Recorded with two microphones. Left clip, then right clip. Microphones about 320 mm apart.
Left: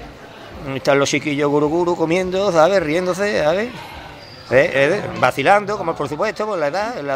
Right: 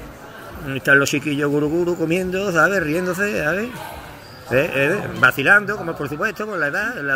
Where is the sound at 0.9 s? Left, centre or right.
Centre.